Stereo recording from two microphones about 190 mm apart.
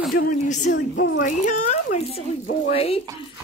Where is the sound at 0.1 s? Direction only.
40° left (ahead or behind).